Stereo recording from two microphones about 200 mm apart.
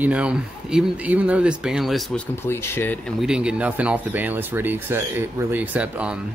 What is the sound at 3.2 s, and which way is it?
Speech, 5° right (ahead or behind).